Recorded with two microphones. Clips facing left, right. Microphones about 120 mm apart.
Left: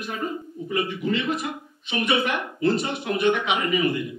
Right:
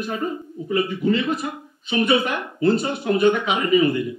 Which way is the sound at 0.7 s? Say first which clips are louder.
Right 5 dB; 30° right (ahead or behind).